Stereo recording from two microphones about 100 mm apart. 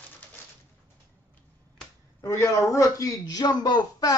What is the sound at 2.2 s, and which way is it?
A man's voice, 30° left (ahead or behind).